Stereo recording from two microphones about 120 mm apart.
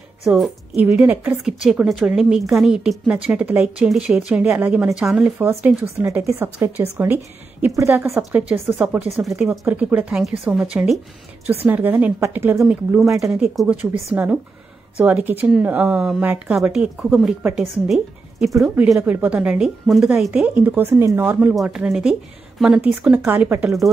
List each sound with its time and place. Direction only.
0.3 s a woman's voice: 10° right (ahead or behind)
1.4 s a woman's voice: centre (ahead or behind)
5.4 s a woman's voice: 20° right (ahead or behind)
8.3 s a woman's voice: 10° right (ahead or behind)
12.5 s a woman's voice: 5° right (ahead or behind)
18.9 s a woman's voice: 15° right (ahead or behind)